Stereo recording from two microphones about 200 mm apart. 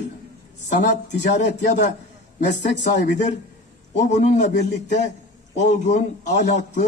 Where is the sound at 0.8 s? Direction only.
60° left (ahead or behind).